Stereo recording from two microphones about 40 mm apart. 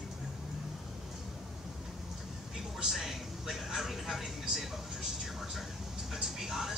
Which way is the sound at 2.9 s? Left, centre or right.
Centre.